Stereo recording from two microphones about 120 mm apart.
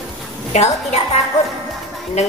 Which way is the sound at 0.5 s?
70° left (ahead or behind).